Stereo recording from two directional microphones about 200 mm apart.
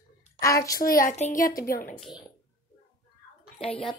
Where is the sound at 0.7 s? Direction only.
45° left (ahead or behind).